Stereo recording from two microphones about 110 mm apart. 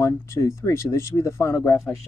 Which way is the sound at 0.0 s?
30° left (ahead or behind).